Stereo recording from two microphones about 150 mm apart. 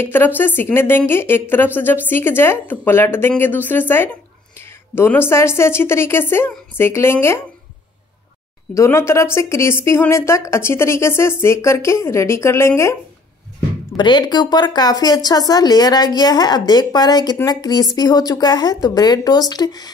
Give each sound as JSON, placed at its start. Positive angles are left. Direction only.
{"t": 0.0, "sound": "a woman's voice", "side_deg": 15}
{"t": 8.7, "sound": "a woman's voice", "side_deg": 20}
{"t": 13.9, "sound": "speech", "side_deg": 30}